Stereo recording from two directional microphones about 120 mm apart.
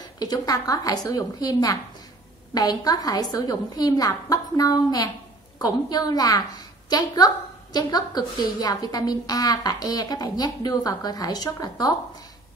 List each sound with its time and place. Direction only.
0.0 s a woman's voice: 35° left (ahead or behind)